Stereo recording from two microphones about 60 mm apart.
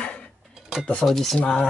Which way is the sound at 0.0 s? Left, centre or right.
Left.